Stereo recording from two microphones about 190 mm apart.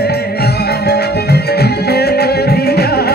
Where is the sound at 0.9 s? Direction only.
60° left (ahead or behind).